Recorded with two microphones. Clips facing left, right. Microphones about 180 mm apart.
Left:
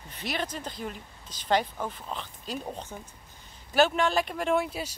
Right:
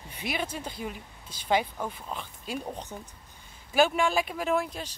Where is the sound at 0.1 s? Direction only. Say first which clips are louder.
Even; 10° right (ahead or behind).